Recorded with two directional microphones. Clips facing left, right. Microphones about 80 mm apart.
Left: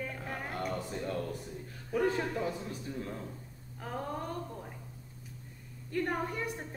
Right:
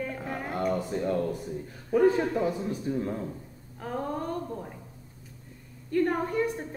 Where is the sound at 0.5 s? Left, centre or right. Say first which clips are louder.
Right 9 dB; right.